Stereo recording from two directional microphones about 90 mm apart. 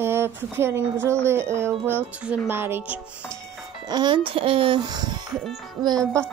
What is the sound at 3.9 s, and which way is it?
A child's voice, 60° right (ahead or behind).